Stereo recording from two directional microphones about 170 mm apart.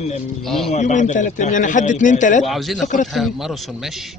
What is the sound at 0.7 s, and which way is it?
A man's voice, 45° left (ahead or behind).